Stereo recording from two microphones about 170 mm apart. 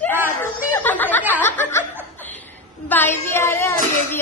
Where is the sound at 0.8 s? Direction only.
10° left (ahead or behind).